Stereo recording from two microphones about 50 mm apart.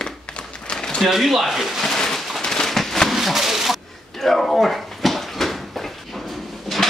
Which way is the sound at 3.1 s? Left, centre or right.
Centre.